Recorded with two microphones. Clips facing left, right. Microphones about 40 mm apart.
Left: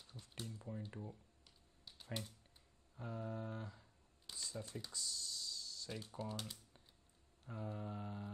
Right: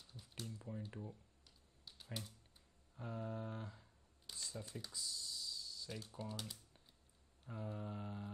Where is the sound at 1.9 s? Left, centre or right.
Centre.